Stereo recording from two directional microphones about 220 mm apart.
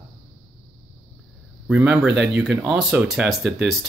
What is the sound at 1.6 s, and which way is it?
Speech, 5° right (ahead or behind).